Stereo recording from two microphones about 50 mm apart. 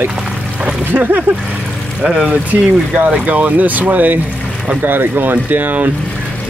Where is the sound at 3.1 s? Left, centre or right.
Right.